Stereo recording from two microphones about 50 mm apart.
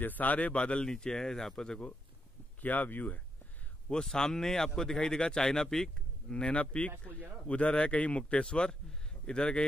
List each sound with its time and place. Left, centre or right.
0.0 s speech: left; by 1.8 s centre
2.6 s speech: left
3.9 s speech: centre
6.3 s speech: left